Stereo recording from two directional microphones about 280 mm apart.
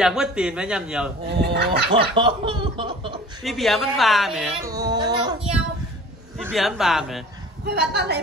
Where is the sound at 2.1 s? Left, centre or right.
Centre.